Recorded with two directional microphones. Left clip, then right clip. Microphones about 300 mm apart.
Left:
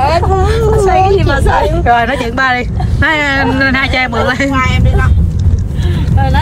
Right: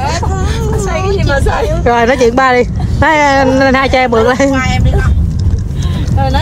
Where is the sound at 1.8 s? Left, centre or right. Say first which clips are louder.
Right 2 dB; right.